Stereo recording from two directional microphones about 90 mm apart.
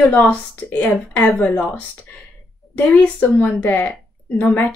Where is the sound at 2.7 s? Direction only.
15° left (ahead or behind).